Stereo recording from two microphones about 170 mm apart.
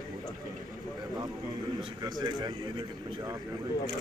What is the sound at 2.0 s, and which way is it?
Speech, 25° right (ahead or behind).